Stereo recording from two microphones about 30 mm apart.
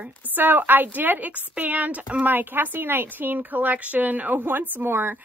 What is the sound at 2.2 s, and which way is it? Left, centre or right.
A woman's voice, right.